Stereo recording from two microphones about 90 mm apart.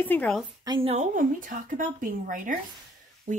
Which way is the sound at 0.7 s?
50° right (ahead or behind).